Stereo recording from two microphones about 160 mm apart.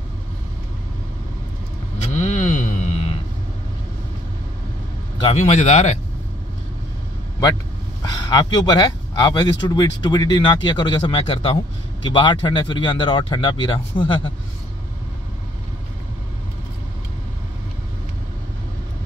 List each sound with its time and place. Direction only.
2.1 s a sound: 45° left (ahead or behind)
5.2 s a man's voice: 45° left (ahead or behind)
8.0 s speech: 25° left (ahead or behind)